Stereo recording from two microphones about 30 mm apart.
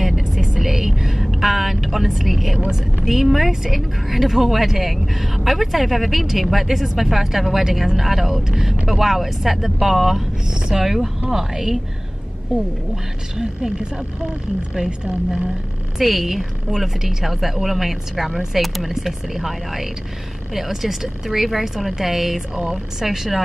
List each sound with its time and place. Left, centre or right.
0.0 s vehicle: centre
3.1 s a woman's voice: centre; by 14.0 s right
16.0 s a woman's voice: centre